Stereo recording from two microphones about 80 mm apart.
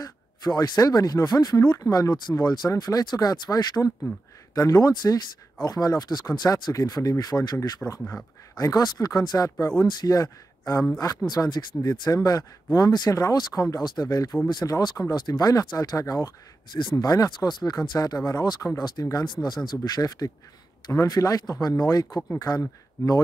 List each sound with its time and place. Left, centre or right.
0.0 s speech: left
6.7 s speech: left
7.8 s speech: centre
8.5 s speech: left
10.1 s a man's voice: left
11.2 s speech: left
19.2 s speech: left